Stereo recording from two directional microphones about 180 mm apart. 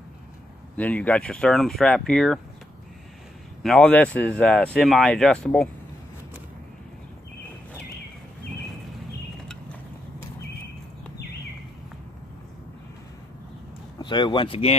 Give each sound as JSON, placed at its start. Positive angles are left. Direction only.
{"t": 0.7, "sound": "speech", "side_deg": 10}
{"t": 3.6, "sound": "speech", "side_deg": 5}
{"t": 13.9, "sound": "speech", "side_deg": 25}